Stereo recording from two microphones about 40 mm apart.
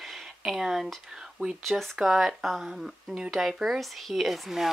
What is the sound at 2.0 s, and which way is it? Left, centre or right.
Speech, centre.